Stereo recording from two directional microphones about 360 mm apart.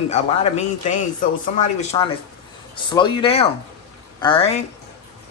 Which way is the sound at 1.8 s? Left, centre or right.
Centre.